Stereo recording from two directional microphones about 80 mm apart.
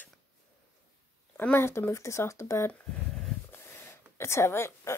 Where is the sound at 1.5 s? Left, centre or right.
Left.